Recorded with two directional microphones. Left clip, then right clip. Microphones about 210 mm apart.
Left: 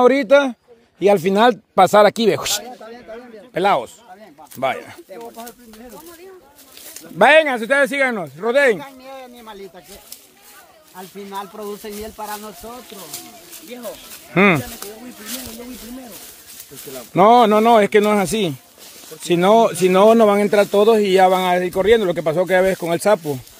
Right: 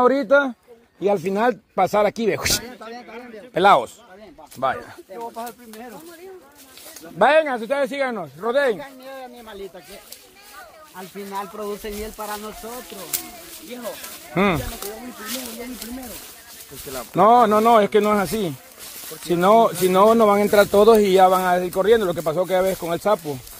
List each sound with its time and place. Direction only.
0.0 s speech: 30° left (ahead or behind)
3.5 s speech: 5° left (ahead or behind)
4.6 s speech: 25° left (ahead or behind)
7.2 s speech: 25° left (ahead or behind)
8.7 s speech: 50° left (ahead or behind)
11.0 s speech: 15° left (ahead or behind)
14.3 s speech: 35° left (ahead or behind)
17.1 s speech: 30° left (ahead or behind); by 20.8 s 15° left (ahead or behind)
20.8 s speech: centre (ahead or behind)
21.2 s speech: 20° left (ahead or behind)